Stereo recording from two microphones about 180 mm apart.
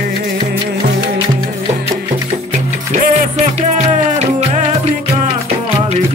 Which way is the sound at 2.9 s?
40° right (ahead or behind).